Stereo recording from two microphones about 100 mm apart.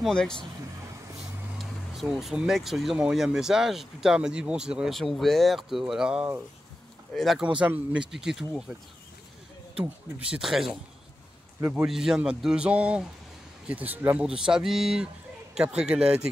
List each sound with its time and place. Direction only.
0.0 s speech: 5° left (ahead or behind)
1.6 s speech: centre (ahead or behind)
7.4 s a man's voice: 15° right (ahead or behind)
9.8 s a man's voice: 10° right (ahead or behind)
14.2 s a man's voice: 5° right (ahead or behind)